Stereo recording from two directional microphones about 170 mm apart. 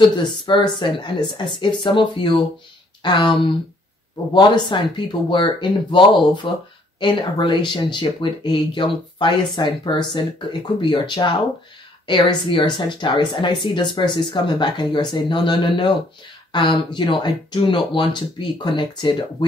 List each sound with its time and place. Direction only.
0.1 s speech: 25° left (ahead or behind)